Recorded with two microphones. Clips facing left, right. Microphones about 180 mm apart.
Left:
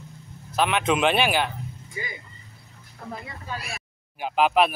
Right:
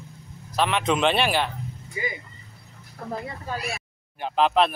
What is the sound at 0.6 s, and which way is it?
Speech, centre (ahead or behind).